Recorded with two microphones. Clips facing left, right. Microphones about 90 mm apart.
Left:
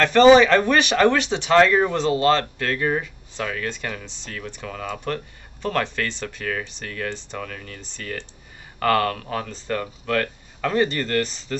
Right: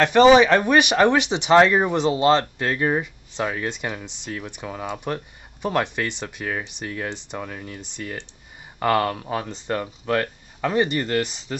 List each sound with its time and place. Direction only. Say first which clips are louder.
0.0 s speech: left 1 dB; 15° right (ahead or behind)